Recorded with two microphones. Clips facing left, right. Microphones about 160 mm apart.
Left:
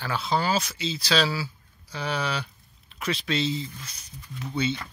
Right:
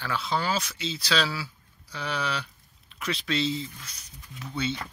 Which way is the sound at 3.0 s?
5° left (ahead or behind).